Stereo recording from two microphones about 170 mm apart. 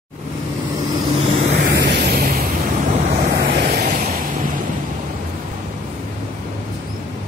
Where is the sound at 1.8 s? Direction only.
75° right (ahead or behind).